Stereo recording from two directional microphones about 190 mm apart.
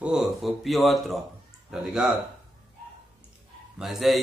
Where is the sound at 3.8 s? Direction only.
Centre (ahead or behind).